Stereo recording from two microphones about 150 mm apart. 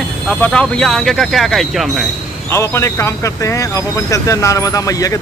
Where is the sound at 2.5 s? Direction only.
20° left (ahead or behind).